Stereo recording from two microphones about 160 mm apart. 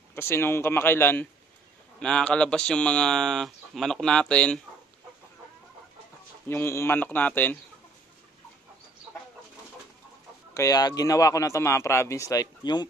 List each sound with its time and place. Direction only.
0.1 s speech: 15° left (ahead or behind)
6.5 s speech: 15° left (ahead or behind)
9.1 s chicken: 15° right (ahead or behind)
10.5 s speech: 20° left (ahead or behind)